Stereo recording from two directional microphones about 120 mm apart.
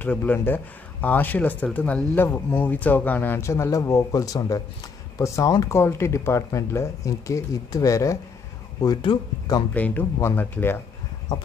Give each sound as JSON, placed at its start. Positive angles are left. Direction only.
{"t": 0.0, "sound": "speech", "side_deg": 15}
{"t": 8.8, "sound": "speech", "side_deg": 40}
{"t": 9.8, "sound": "speech", "side_deg": 15}
{"t": 11.3, "sound": "speech", "side_deg": 35}